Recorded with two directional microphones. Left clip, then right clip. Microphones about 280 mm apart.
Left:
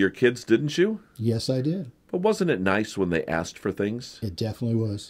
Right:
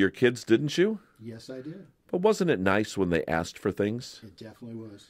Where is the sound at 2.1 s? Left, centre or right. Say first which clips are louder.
Left 1 dB; right.